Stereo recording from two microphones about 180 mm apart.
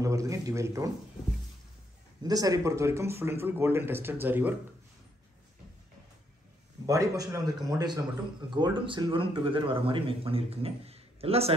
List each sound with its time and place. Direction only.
0.0 s speech: 20° right (ahead or behind)
2.2 s speech: 20° right (ahead or behind)
6.9 s speech: 20° right (ahead or behind); by 11.5 s 35° right (ahead or behind)